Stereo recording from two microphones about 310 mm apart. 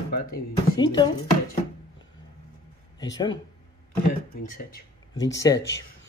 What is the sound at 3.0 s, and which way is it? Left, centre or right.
Speech, centre.